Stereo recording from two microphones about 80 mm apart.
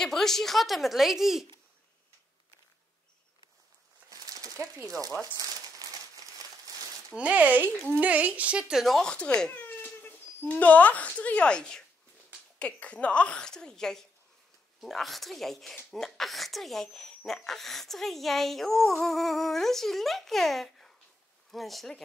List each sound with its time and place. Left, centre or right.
0.0 s speech: centre
4.1 s a sound: right
4.8 s speech: right
5.3 s a sound: right
7.2 s speech: centre
8.8 s speech: centre
9.1 s a woman's voice: centre
9.5 s cat: left
10.4 s a woman's voice: centre